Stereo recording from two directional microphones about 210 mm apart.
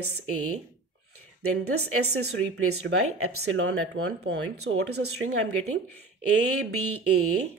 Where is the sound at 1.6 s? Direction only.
90° right.